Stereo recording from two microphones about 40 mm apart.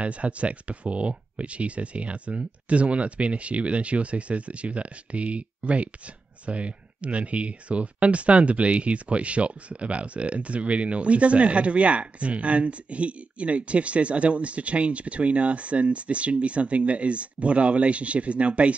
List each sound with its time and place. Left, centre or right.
0.0 s speech: right